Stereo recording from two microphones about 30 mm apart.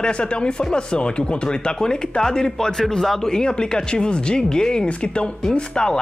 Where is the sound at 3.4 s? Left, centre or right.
Left.